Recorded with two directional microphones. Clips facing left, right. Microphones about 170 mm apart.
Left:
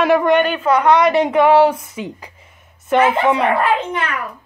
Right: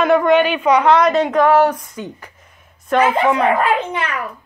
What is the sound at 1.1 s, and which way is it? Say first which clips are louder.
A woman's voice: left 1 dB; 10° left (ahead or behind).